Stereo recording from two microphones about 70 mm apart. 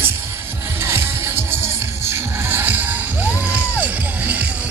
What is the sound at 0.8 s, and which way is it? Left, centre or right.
Music, right.